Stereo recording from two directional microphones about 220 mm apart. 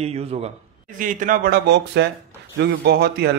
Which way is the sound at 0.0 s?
30° right (ahead or behind).